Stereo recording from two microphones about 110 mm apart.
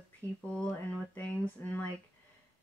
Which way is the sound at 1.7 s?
15° left (ahead or behind).